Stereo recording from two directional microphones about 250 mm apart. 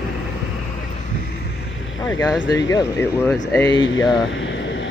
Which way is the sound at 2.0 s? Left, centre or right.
Centre.